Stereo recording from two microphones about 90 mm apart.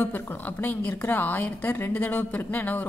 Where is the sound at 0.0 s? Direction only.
25° left (ahead or behind).